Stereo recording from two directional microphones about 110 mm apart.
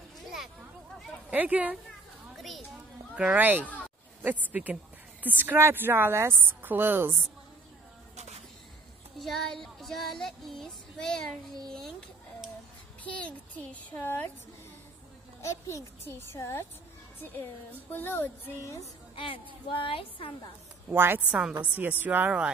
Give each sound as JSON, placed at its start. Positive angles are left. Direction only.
{"t": 1.3, "sound": "a woman's voice", "side_deg": -15}
{"t": 2.3, "sound": "children playing", "side_deg": 0}
{"t": 3.2, "sound": "a woman's voice", "side_deg": -15}
{"t": 9.2, "sound": "child singing", "side_deg": 0}
{"t": 13.0, "sound": "a child's voice", "side_deg": 10}
{"t": 16.1, "sound": "a child's voice", "side_deg": 25}
{"t": 19.1, "sound": "a woman's voice", "side_deg": 55}
{"t": 20.9, "sound": "a woman's voice", "side_deg": -20}